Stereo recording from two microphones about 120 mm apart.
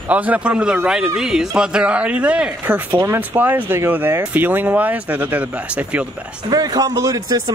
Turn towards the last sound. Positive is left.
turn(degrees=-30)  # may be behind; listen again after turning